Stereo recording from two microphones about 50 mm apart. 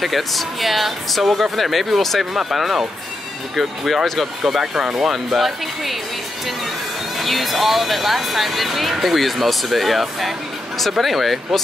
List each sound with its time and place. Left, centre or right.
0.0 s speech: centre
5.1 s speech: centre
7.2 s speech: centre